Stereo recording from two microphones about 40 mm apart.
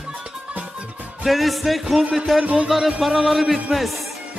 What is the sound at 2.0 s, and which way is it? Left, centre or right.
Speech, centre.